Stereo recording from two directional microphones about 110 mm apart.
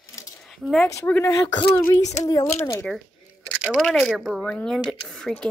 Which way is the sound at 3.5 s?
10° right (ahead or behind).